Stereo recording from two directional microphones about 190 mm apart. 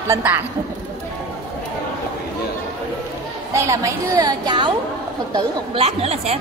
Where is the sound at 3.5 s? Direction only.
15° right (ahead or behind); by 6.4 s 30° right (ahead or behind).